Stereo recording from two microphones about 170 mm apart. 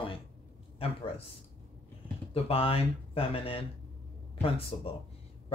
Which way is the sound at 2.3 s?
35° left (ahead or behind).